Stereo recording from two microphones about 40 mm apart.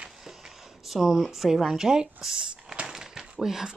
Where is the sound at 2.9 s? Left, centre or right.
Centre.